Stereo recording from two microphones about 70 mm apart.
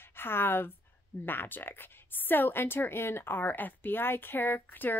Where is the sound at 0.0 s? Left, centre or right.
Left.